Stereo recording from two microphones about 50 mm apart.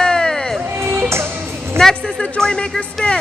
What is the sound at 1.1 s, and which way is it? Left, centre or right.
Music, right.